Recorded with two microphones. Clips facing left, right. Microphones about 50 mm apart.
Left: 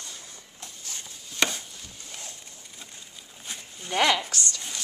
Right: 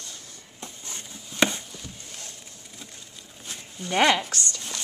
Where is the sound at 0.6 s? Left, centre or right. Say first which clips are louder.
Right 2 dB; centre.